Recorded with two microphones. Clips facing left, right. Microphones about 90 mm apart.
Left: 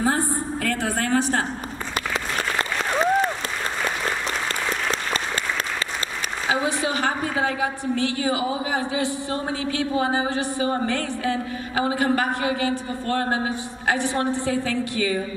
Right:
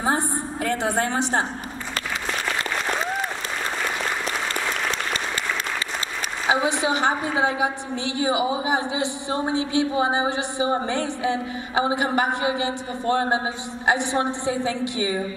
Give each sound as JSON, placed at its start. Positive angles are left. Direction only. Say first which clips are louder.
{"t": 0.7, "sound": "a woman's voice", "louder": "right 1 dB", "side_deg": -20}
{"t": 6.5, "sound": "a woman's voice", "louder": "right 2 dB", "side_deg": -20}